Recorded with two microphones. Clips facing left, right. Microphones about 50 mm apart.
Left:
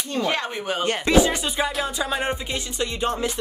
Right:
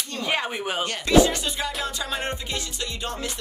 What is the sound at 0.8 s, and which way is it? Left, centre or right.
Music, left.